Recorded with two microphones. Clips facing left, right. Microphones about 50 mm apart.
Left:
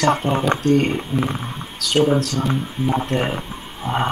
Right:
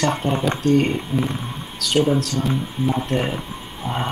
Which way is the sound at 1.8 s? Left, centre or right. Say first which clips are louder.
Left 1 dB; centre.